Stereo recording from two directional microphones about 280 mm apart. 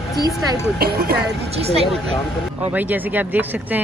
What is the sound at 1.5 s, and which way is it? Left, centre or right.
Speech, right.